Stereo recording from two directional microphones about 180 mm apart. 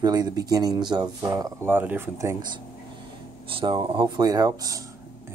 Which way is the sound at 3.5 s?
30° right (ahead or behind).